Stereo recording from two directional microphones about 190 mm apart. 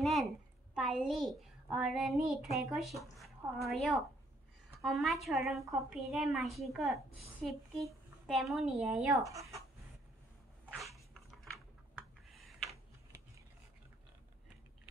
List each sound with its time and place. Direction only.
0.0 s a sound: centre (ahead or behind)
0.7 s a child's voice: centre (ahead or behind)
5.6 s speech: 15° right (ahead or behind)
5.9 s a woman's voice: centre (ahead or behind)
9.2 s speech: 15° right (ahead or behind)
10.6 s a sound: 5° right (ahead or behind)